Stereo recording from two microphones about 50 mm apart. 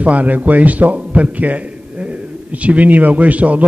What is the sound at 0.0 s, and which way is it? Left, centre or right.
A man's voice, right.